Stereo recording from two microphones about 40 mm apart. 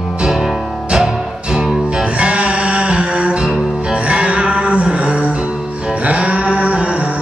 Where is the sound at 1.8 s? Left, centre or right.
Right.